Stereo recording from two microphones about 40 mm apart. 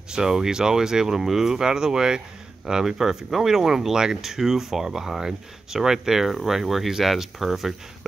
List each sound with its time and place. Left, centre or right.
0.1 s speech: centre